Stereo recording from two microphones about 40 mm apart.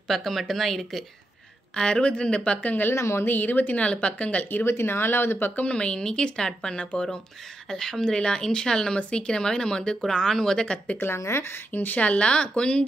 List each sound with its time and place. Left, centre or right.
0.1 s speech: centre
1.8 s speech: left
2.9 s speech: left
3.3 s speech: left
3.7 s speech: left
4.6 s speech: left
5.7 s speech: left
11.0 s speech: left
11.8 s speech: left
12.3 s speech: left